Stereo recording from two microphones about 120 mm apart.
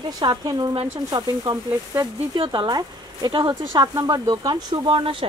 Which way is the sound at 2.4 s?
40° right (ahead or behind).